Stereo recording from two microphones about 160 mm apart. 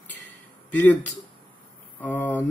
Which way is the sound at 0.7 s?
10° left (ahead or behind).